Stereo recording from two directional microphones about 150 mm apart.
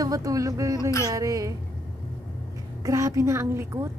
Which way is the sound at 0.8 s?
20° left (ahead or behind).